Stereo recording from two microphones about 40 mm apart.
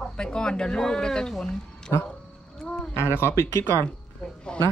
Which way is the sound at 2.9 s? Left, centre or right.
Left.